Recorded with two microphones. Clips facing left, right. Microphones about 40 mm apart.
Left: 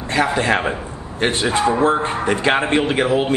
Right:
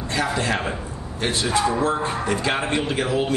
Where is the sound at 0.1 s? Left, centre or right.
Left.